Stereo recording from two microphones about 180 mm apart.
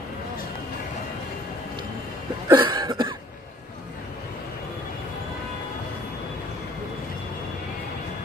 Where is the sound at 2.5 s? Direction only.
25° right (ahead or behind).